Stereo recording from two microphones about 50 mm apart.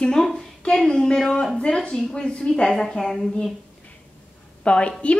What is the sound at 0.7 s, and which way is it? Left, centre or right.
Speech, centre.